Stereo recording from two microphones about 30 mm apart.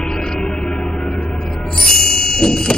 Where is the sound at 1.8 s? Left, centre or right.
Left.